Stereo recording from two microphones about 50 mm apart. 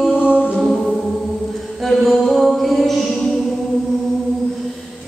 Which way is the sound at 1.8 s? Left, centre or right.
Centre.